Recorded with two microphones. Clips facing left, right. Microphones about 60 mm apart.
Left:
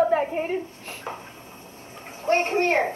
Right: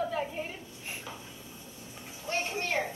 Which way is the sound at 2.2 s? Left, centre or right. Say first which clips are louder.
Left 12 dB; left.